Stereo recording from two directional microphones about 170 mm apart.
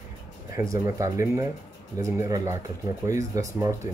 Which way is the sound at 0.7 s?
20° right (ahead or behind).